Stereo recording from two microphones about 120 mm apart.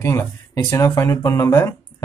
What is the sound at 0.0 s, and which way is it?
Speech, 25° left (ahead or behind).